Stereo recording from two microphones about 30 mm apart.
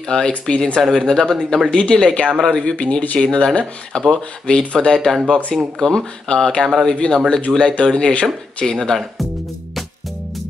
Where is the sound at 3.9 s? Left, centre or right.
Left.